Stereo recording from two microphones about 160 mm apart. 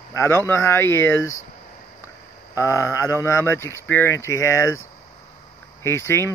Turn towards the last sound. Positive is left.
turn(degrees=15)  # may be behind; listen again after turning